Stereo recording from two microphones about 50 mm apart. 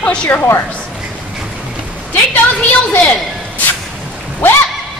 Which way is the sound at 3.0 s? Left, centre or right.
Left.